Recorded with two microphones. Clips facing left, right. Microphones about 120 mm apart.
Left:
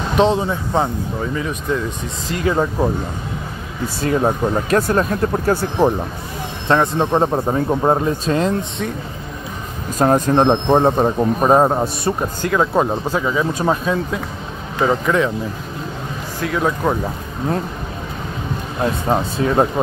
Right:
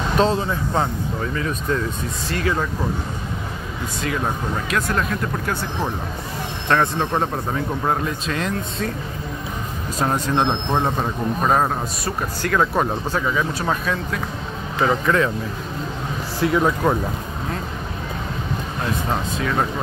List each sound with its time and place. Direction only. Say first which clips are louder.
0.2 s speech: left 4 dB; 20° left (ahead or behind)
3.8 s speech: left 7 dB; 35° left (ahead or behind)
7.0 s speech: left 6 dB; 20° left (ahead or behind)
9.9 s speech: left 7 dB; 45° left (ahead or behind); by 14.2 s 20° left (ahead or behind)
14.8 s speech: left 2 dB; 10° left (ahead or behind)
16.3 s speech: right 1 dB; centre (ahead or behind)
19.0 s speech: left 6 dB; 30° left (ahead or behind)